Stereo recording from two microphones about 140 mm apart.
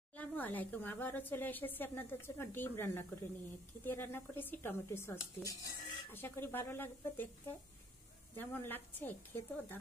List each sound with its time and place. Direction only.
0.1 s speech: 10° left (ahead or behind)
8.4 s speech: 15° left (ahead or behind)